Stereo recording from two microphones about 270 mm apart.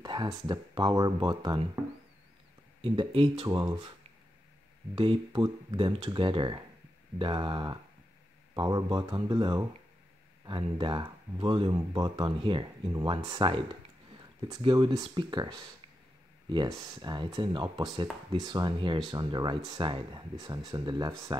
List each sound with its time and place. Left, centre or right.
0.0 s a sound: centre
0.5 s speech: centre
2.8 s speech: right
4.9 s speech: centre